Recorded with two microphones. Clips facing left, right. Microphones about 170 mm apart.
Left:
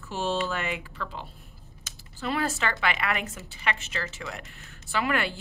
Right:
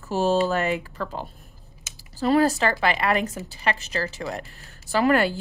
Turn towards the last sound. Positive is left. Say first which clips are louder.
# right 8 dB
turn(degrees=-40)  # may be behind; listen again after turning